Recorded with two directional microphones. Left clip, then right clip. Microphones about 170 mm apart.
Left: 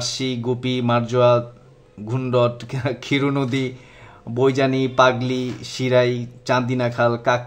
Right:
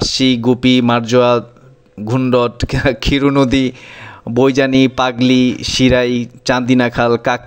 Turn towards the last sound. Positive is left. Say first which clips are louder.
# right 5 dB
turn(degrees=-45)  # may be behind; listen again after turning